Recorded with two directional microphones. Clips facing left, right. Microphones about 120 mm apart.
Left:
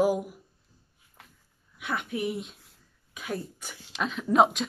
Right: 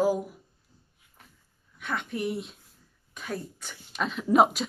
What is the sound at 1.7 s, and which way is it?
A woman's voice, 10° left (ahead or behind).